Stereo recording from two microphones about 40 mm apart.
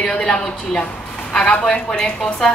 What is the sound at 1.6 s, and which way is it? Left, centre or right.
Speech, centre.